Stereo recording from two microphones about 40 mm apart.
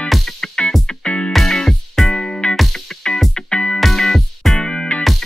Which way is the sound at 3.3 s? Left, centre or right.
Left.